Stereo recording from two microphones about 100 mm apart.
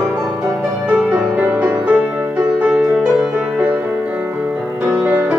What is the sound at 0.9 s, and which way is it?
Music, 10° right (ahead or behind).